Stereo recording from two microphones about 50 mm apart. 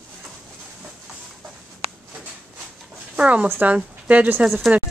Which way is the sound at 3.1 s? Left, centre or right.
Right.